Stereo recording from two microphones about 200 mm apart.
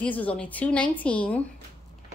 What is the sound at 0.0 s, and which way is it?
A woman's voice, 5° left (ahead or behind).